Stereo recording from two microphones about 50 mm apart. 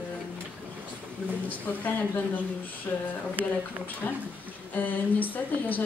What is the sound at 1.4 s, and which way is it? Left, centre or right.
Speech, left.